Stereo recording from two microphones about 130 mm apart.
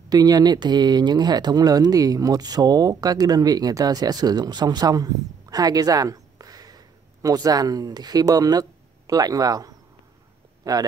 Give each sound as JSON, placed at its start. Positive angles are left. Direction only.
{"t": 0.1, "sound": "speech", "side_deg": -30}